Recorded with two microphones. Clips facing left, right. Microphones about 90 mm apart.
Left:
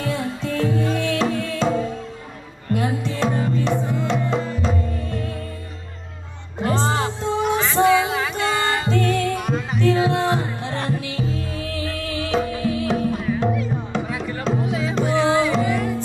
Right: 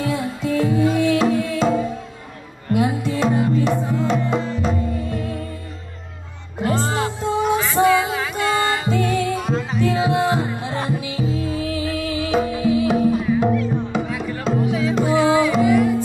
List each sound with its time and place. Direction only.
0.0 s music: 10° right (ahead or behind)
6.6 s music: 10° right (ahead or behind)